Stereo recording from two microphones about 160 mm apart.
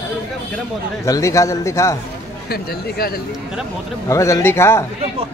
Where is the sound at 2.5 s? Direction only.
70° left (ahead or behind).